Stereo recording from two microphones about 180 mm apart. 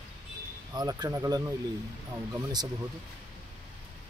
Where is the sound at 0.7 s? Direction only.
20° right (ahead or behind).